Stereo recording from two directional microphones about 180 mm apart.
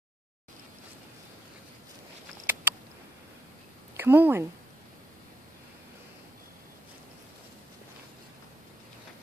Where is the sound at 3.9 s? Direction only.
10° right (ahead or behind).